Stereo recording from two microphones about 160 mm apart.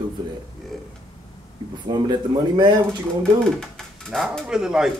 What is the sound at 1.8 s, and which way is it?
Speech, 30° right (ahead or behind).